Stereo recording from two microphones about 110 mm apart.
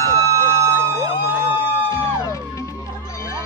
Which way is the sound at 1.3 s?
15° right (ahead or behind).